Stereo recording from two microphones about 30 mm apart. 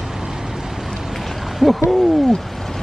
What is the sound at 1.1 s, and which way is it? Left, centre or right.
Hoot, centre.